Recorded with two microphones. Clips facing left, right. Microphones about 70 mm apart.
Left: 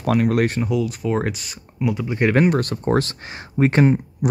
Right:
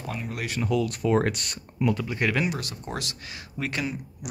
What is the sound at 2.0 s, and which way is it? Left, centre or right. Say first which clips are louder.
Speech: left 7 dB; left.